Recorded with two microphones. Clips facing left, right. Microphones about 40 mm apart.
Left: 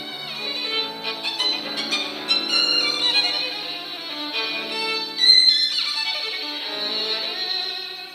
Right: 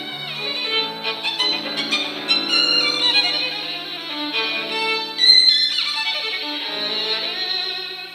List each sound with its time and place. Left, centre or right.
0.7 s music: right